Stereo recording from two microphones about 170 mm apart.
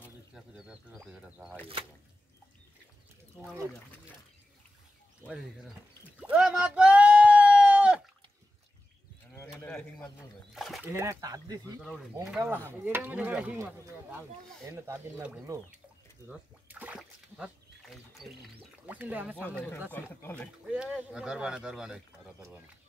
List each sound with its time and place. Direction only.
0.3 s a sound: 5° right (ahead or behind)
5.2 s speech: 5° right (ahead or behind)
6.3 s sheep: 5° right (ahead or behind)
9.3 s sheep: 15° left (ahead or behind)
9.7 s speech: 5° left (ahead or behind)
10.9 s speech: 15° right (ahead or behind)
12.8 s speech: 10° right (ahead or behind)
16.3 s splash: 10° right (ahead or behind)
18.9 s speech: 10° right (ahead or behind)
19.9 s speech: 10° left (ahead or behind)
20.6 s speech: 5° right (ahead or behind)